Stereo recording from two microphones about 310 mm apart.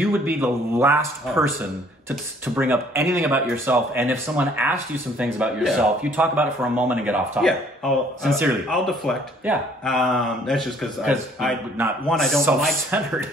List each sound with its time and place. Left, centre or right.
0.1 s speech: centre